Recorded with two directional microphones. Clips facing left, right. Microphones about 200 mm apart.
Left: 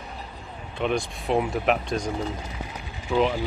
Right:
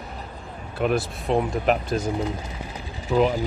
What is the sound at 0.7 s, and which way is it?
Speech, 5° right (ahead or behind).